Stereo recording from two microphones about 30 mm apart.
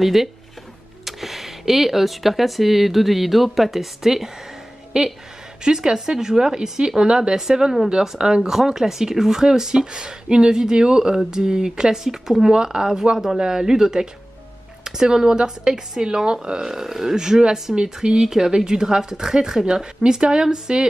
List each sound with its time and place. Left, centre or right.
0.0 s speech: centre
6.5 s speech: right
7.3 s speech: centre
19.6 s speech: right